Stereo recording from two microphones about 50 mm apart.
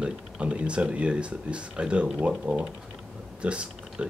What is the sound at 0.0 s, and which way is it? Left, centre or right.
Speech, right.